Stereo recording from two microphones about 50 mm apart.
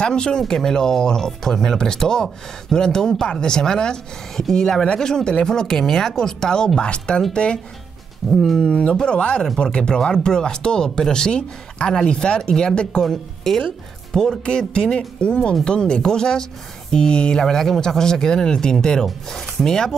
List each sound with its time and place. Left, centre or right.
0.0 s a woman's voice: centre
8.3 s speech: centre
8.6 s a woman's voice: centre
13.0 s a woman's voice: centre
14.4 s a woman's voice: left